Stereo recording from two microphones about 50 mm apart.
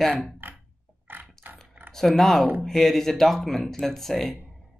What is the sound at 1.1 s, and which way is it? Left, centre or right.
Mechanisms, right.